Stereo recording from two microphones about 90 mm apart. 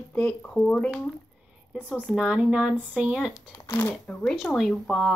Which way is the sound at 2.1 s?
10° right (ahead or behind).